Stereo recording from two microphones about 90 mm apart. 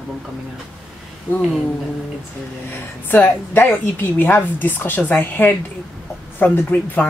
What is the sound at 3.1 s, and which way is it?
A woman's voice, 20° left (ahead or behind).